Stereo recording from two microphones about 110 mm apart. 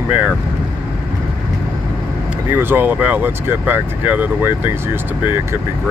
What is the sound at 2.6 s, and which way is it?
Speech, 15° right (ahead or behind).